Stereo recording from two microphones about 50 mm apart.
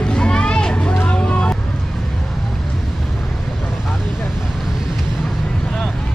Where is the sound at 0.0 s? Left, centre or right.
Centre.